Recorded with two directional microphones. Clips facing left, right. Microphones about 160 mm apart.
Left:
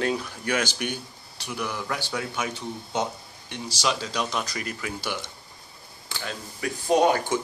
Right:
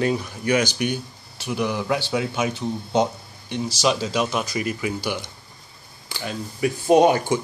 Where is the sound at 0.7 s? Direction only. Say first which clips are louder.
Right 6 dB; 5° right (ahead or behind).